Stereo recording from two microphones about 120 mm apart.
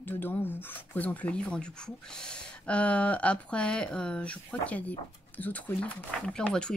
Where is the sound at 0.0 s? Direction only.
15° left (ahead or behind).